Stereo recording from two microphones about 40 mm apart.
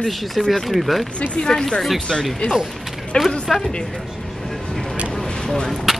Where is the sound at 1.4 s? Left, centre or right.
Centre.